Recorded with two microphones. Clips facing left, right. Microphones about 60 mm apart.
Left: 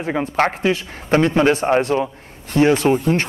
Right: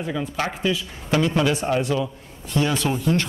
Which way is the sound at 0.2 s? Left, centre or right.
Left.